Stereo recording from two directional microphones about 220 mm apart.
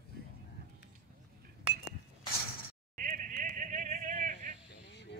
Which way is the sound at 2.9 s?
40° right (ahead or behind).